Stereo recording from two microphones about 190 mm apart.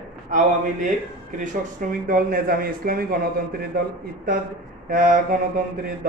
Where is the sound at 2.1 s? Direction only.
50° right (ahead or behind).